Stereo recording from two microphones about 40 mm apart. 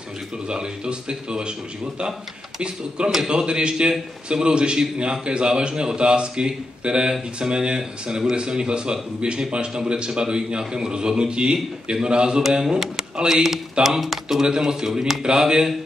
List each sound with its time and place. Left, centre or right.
0.5 s a man's voice: right
3.3 s a man's voice: right
12.5 s speech: centre
14.4 s a man's voice: centre